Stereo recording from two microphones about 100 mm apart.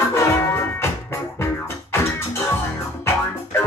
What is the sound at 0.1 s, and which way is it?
Music, 25° left (ahead or behind).